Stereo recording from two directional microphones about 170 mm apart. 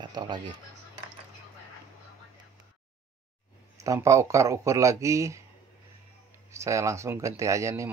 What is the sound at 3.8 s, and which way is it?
Speech, 20° right (ahead or behind).